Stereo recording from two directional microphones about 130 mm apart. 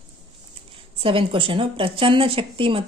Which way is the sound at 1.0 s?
45° right (ahead or behind).